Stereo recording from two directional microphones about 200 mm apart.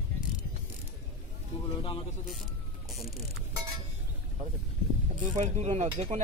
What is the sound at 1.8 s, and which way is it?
Speech, 25° left (ahead or behind).